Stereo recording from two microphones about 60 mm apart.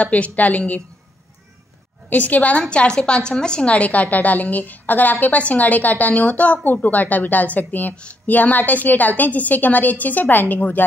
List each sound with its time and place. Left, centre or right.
0.0 s a woman's voice: left
2.0 s a woman's voice: left